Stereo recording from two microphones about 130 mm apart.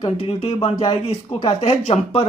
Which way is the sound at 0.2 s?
45° left (ahead or behind).